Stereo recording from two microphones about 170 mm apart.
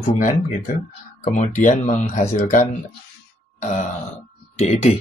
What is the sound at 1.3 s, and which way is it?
Speech, 50° left (ahead or behind).